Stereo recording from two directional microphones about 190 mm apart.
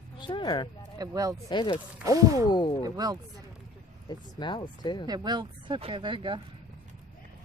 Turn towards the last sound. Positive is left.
turn(degrees=-25)  # may be behind; listen again after turning